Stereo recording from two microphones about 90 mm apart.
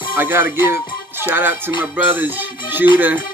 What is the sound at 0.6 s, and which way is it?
Music, 25° right (ahead or behind).